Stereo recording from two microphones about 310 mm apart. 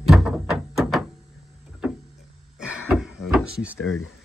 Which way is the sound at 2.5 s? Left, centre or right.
Centre.